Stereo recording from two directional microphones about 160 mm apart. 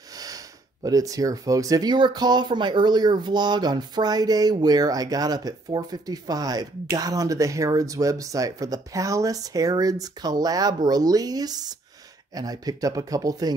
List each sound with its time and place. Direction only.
0.8 s speech: 20° right (ahead or behind)